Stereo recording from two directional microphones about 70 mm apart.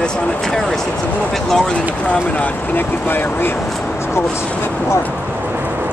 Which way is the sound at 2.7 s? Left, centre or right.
Left.